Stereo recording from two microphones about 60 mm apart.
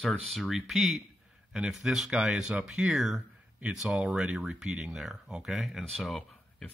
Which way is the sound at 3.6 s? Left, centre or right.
Centre.